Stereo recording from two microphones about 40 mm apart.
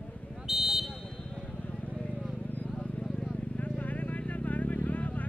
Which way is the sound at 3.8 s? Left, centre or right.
Left.